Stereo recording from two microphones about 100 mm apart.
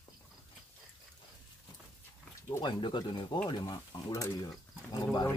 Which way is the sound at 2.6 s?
50° left (ahead or behind).